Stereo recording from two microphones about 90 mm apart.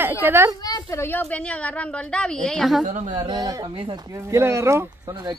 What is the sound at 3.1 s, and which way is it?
Speech, 50° right (ahead or behind).